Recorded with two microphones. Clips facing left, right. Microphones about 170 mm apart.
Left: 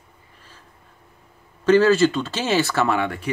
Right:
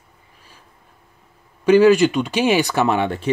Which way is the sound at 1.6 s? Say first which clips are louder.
Right 3 dB; 15° right (ahead or behind).